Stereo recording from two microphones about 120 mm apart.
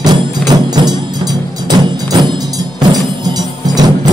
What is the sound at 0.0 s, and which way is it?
Music, 35° right (ahead or behind).